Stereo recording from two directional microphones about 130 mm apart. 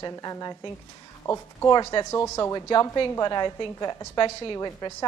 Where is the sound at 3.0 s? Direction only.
30° left (ahead or behind).